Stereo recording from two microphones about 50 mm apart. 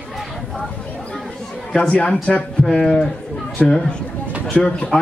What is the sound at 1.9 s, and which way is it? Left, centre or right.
Speech, left.